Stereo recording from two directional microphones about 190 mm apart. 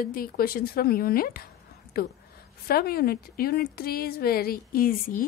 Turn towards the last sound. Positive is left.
turn(degrees=50)  # may be behind; listen again after turning